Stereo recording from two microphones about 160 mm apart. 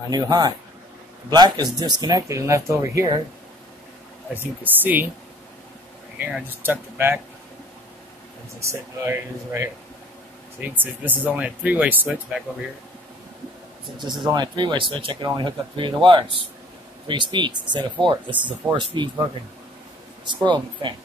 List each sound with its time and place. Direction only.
0.1 s speech: 25° right (ahead or behind)
4.3 s speech: 10° right (ahead or behind)
6.1 s speech: 10° right (ahead or behind)
8.5 s speech: 15° right (ahead or behind)
10.8 s speech: 10° right (ahead or behind)
13.9 s speech: 25° right (ahead or behind)
20.2 s speech: 30° right (ahead or behind)